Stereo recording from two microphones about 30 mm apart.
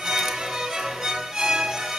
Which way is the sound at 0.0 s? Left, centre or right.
Centre.